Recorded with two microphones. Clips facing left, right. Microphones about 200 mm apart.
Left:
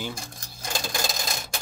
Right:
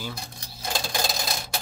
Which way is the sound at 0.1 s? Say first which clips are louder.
Even; 50° left (ahead or behind).